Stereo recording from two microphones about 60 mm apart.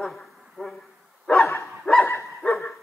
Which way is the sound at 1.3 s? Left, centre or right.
Centre.